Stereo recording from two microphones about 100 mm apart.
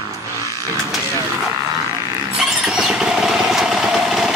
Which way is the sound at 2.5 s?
5° right (ahead or behind).